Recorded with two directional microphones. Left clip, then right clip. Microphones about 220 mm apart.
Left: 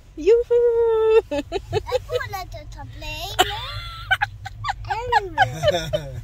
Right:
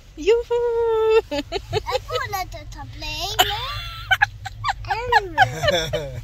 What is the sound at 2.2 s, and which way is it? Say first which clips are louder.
Speech: right 2 dB; 20° left (ahead or behind).